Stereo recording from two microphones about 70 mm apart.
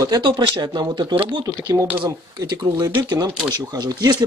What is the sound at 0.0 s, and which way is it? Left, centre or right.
Speech, right.